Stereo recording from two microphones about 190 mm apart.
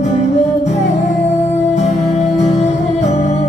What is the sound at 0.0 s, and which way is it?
Music, 35° left (ahead or behind).